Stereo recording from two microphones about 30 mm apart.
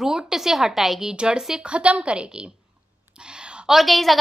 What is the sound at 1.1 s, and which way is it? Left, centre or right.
A woman's voice, right.